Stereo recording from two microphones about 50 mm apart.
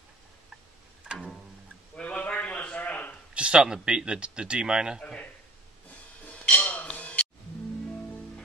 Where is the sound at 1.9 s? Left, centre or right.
Left.